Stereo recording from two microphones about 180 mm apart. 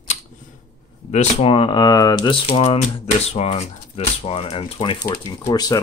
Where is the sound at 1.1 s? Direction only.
30° left (ahead or behind).